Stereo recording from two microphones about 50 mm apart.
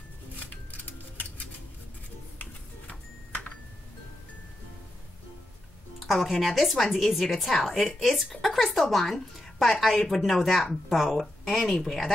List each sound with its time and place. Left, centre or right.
5.9 s a woman's voice: centre